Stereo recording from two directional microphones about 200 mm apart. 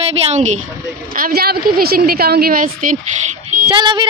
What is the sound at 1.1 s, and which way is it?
A woman's voice, 45° right (ahead or behind).